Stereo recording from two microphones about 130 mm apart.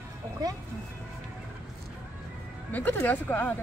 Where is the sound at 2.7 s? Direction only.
15° left (ahead or behind).